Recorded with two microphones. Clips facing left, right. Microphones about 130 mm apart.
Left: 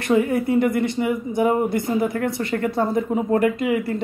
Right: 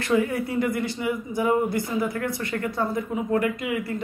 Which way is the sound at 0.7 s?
20° left (ahead or behind).